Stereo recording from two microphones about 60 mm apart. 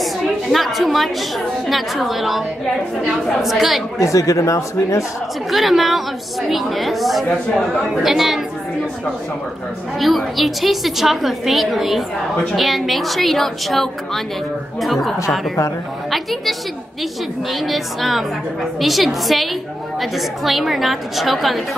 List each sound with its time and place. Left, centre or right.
0.5 s a woman's voice: centre
4.0 s speech: left
5.5 s a woman's voice: centre
9.9 s a woman's voice: centre